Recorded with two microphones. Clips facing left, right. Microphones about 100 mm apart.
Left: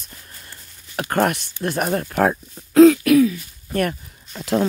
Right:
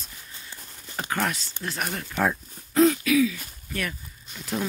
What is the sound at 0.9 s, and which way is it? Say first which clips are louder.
Speech: left 8 dB; 60° left (ahead or behind).